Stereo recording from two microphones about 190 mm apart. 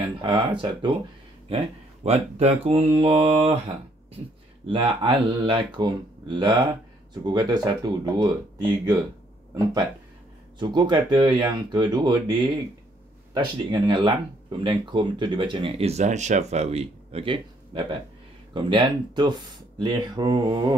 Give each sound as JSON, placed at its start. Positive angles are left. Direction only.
{"t": 0.0, "sound": "speech", "side_deg": -25}
{"t": 2.0, "sound": "speech", "side_deg": -35}
{"t": 10.6, "sound": "speech", "side_deg": -25}